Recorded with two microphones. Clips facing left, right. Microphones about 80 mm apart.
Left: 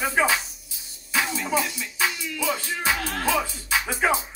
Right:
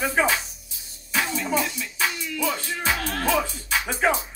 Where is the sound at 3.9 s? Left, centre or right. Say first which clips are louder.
Right 1 dB; left.